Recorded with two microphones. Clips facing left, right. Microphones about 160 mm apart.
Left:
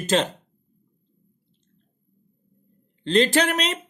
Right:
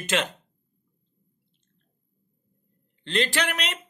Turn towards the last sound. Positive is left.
turn(degrees=40)  # may be behind; listen again after turning